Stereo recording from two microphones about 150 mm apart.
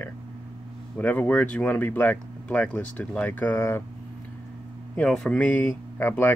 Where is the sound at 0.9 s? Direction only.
10° left (ahead or behind).